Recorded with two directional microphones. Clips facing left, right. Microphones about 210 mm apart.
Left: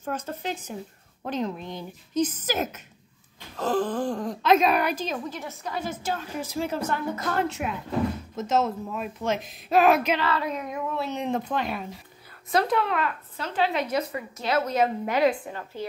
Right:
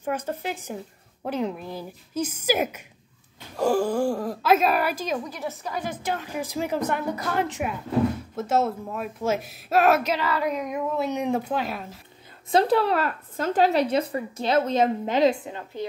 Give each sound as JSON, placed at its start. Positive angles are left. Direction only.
{"t": 0.0, "sound": "speech", "side_deg": -10}
{"t": 12.4, "sound": "a woman's voice", "side_deg": -30}
{"t": 13.8, "sound": "a woman's voice", "side_deg": -30}